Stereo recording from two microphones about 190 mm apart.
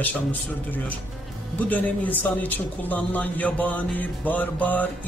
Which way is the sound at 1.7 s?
10° left (ahead or behind).